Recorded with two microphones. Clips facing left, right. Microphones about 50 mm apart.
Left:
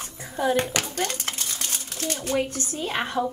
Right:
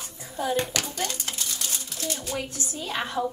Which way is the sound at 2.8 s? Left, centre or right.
Left.